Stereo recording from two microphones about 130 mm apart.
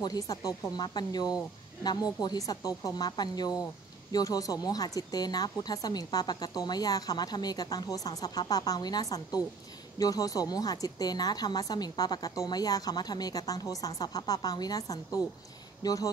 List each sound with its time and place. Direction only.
0.0 s a woman's voice: 30° left (ahead or behind)